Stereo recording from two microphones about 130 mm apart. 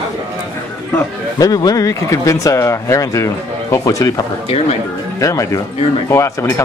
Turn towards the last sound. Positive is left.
turn(degrees=20)  # may be behind; listen again after turning